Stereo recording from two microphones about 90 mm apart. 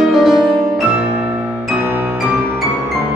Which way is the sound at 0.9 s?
15° right (ahead or behind).